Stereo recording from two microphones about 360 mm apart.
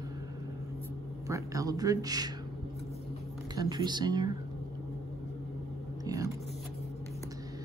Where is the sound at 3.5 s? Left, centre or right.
Centre.